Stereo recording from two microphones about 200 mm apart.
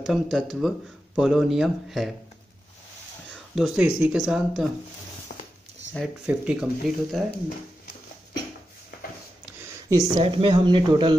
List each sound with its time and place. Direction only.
0.0 s speech: centre (ahead or behind)
3.5 s speech: 5° right (ahead or behind)
5.9 s speech: 5° right (ahead or behind)
9.6 s a sound: 15° right (ahead or behind)
10.2 s speech: 25° right (ahead or behind)